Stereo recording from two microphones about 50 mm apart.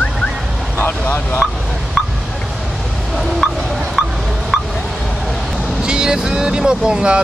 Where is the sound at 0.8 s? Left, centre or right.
Left.